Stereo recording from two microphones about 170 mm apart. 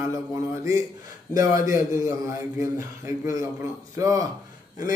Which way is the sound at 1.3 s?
20° right (ahead or behind).